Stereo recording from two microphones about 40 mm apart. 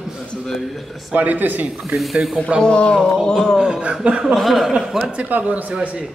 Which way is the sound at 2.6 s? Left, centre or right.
Left.